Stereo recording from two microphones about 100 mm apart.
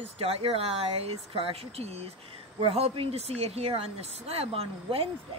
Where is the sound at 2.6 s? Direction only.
80° right.